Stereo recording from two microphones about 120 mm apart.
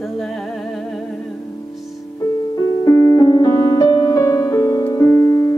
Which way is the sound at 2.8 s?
25° left (ahead or behind).